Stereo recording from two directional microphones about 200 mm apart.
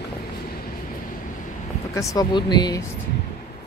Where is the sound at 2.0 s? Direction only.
15° left (ahead or behind).